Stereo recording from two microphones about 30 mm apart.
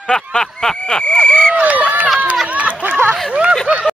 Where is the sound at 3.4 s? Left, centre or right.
Right.